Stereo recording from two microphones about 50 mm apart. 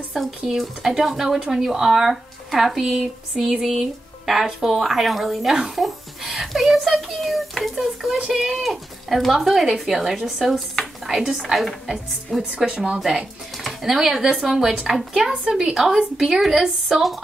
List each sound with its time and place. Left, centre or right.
0.5 s speech: centre
4.6 s music: centre
8.3 s a woman's voice: centre
13.6 s speech: centre
15.1 s a woman's voice: right
15.5 s a woman's voice: centre